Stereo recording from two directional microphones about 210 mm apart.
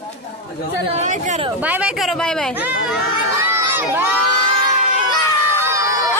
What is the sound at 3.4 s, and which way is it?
Crowd, 10° right (ahead or behind).